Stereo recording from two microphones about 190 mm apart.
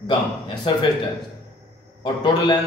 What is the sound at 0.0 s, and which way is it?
Speech, 25° left (ahead or behind).